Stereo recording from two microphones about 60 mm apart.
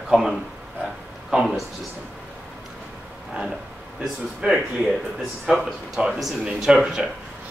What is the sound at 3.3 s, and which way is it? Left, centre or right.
Speech, centre.